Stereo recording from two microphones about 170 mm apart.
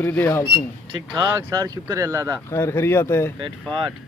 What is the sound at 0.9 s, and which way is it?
Speech, 20° right (ahead or behind).